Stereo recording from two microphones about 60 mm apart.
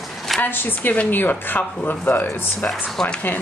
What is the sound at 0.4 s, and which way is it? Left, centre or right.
A woman's voice, left.